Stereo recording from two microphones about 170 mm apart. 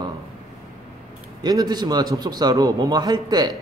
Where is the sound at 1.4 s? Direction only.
25° right (ahead or behind).